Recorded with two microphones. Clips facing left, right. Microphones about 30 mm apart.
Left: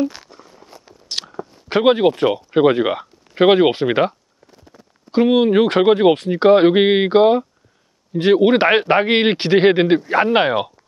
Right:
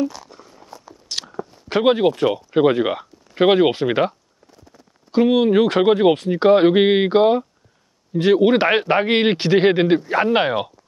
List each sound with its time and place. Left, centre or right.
0.3 s a sound: centre
0.8 s biting: centre
1.7 s speech: centre